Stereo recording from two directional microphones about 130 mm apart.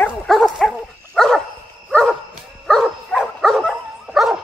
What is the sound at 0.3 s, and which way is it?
Dog, centre (ahead or behind).